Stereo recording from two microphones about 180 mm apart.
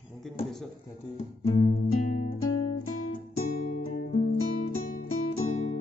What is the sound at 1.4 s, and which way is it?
Music, 35° left (ahead or behind).